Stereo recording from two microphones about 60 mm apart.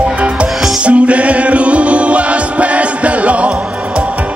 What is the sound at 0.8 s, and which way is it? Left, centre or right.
Music, centre.